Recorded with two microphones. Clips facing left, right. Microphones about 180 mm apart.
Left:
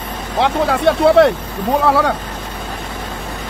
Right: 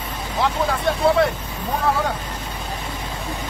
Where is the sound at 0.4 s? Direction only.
70° left (ahead or behind).